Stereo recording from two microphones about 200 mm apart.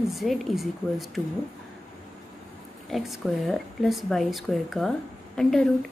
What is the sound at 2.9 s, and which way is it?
Speech, centre (ahead or behind).